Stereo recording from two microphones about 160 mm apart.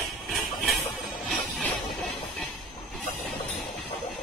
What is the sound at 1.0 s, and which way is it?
Music, centre (ahead or behind).